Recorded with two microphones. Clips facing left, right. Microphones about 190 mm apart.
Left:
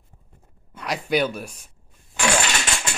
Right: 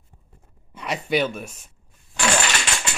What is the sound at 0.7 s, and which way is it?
Speech, centre (ahead or behind).